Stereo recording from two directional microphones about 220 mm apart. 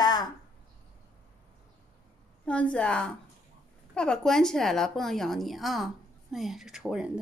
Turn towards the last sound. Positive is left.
turn(degrees=-5)  # may be behind; listen again after turning